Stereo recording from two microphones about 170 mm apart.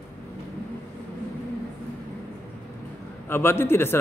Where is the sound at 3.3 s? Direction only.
15° left (ahead or behind).